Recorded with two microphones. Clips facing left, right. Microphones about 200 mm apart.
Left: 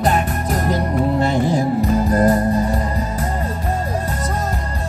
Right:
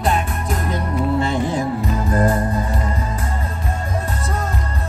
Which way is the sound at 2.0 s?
40° left (ahead or behind).